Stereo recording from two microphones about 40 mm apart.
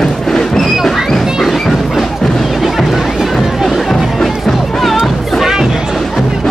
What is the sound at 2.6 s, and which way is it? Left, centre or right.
Music, centre.